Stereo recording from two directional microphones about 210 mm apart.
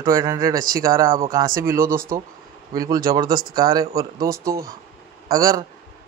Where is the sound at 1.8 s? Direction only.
45° right (ahead or behind).